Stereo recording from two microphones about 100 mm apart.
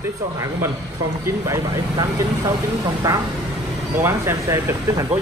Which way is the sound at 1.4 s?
35° right (ahead or behind).